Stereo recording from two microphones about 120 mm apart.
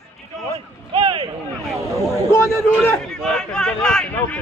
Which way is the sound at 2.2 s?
25° left (ahead or behind).